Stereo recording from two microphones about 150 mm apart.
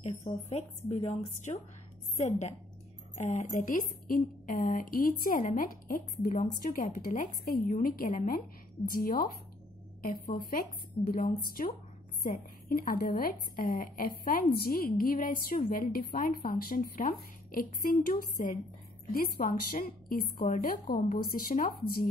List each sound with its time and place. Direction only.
0.0 s a woman's voice: 50° left (ahead or behind); by 11.7 s 65° left (ahead or behind)
12.3 s a woman's voice: 75° left (ahead or behind)
19.1 s a woman's voice: 80° left
20.2 s a woman's voice: 60° left (ahead or behind)